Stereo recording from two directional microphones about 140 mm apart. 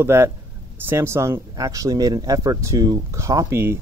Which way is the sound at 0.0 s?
15° right (ahead or behind).